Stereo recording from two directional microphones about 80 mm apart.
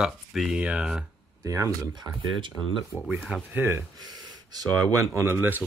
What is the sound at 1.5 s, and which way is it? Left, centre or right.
Speech, right.